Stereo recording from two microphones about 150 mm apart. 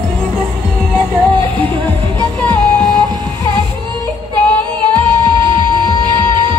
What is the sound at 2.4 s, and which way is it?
Music, 10° left (ahead or behind).